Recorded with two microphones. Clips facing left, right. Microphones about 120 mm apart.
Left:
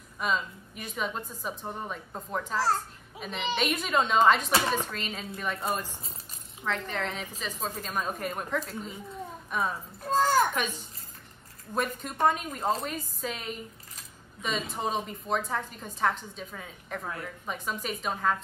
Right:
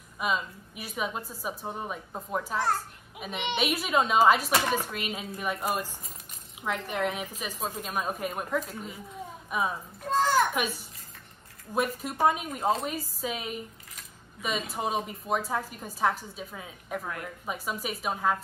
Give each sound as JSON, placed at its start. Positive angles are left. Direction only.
{"t": 0.2, "sound": "a woman's voice", "side_deg": -5}
{"t": 10.0, "sound": "a sound", "side_deg": 40}
{"t": 10.5, "sound": "a child's voice", "side_deg": -10}
{"t": 14.7, "sound": "a woman's voice", "side_deg": -5}